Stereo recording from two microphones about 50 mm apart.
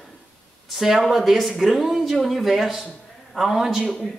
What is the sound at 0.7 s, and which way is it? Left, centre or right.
A man's voice, centre.